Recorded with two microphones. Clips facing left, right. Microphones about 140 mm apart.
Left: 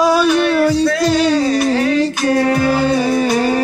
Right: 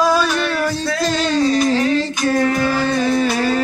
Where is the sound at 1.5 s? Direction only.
55° left (ahead or behind).